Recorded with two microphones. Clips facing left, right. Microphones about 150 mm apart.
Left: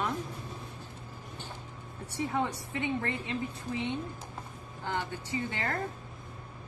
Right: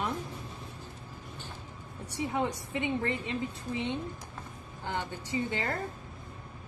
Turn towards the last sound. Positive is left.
turn(degrees=-15)  # may be behind; listen again after turning